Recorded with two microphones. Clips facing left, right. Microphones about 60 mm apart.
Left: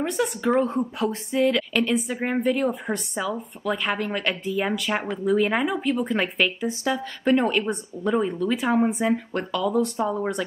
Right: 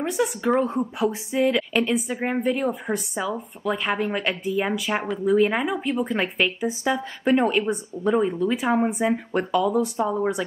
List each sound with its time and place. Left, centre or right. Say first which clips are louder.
0.0 s speech: right 1 dB; centre
9.1 s speech: right 3 dB; centre
9.7 s speech: right 1 dB; centre